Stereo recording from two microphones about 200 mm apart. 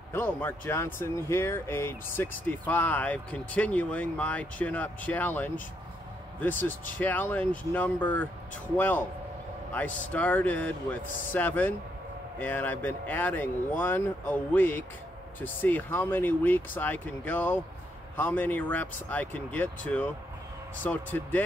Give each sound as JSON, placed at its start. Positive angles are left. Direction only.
{"t": 0.1, "sound": "speech", "side_deg": 10}
{"t": 7.0, "sound": "speech", "side_deg": 10}